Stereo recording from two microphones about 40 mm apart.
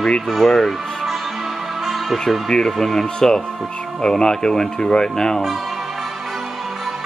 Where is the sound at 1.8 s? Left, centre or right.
Centre.